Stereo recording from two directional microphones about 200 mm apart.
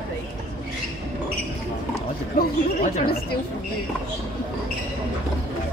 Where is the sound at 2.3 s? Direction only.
45° left (ahead or behind).